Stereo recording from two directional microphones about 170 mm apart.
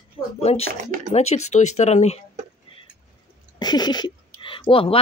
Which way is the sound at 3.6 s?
25° left (ahead or behind).